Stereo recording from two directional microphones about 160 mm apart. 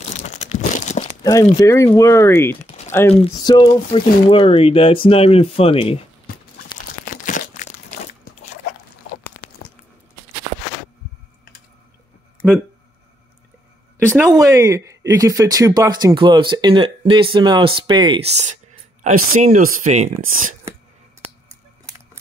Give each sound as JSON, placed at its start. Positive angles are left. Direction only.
{"t": 0.1, "sound": "crumpling", "side_deg": 45}
{"t": 1.2, "sound": "speech", "side_deg": 20}
{"t": 3.4, "sound": "speech", "side_deg": 30}
{"t": 6.3, "sound": "crunch", "side_deg": 65}
{"t": 7.1, "sound": "crumpling", "side_deg": 55}
{"t": 14.3, "sound": "speech", "side_deg": -20}
{"t": 18.2, "sound": "speech", "side_deg": -45}